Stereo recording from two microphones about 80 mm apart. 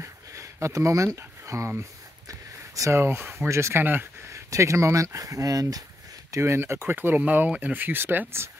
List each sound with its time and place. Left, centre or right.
0.0 s a sound: right
3.0 s speech: right
6.3 s speech: right